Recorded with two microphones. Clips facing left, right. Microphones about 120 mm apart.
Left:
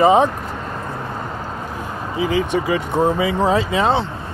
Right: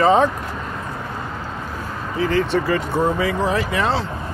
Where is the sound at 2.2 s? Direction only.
10° left (ahead or behind).